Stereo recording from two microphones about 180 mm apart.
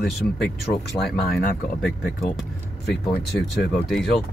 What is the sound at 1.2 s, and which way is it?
Speech, 55° left (ahead or behind).